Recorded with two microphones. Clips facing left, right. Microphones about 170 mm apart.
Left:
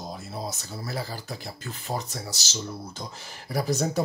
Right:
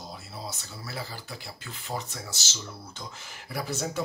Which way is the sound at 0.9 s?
40° left (ahead or behind).